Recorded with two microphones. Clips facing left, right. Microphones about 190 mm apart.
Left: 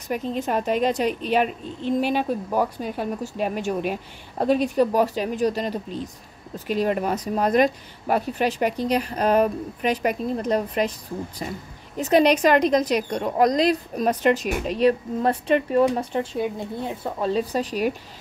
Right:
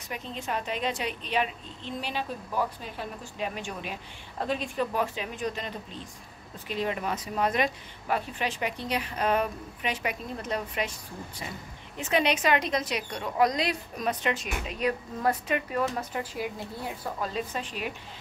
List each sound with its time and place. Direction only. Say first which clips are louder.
0.1 s a woman's voice: left 9 dB; 45° left (ahead or behind)
12.0 s a woman's voice: left 9 dB; 40° left (ahead or behind)
14.8 s speech: left 9 dB; 30° left (ahead or behind)